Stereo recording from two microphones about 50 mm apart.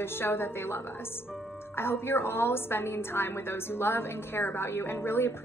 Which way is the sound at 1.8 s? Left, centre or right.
Left.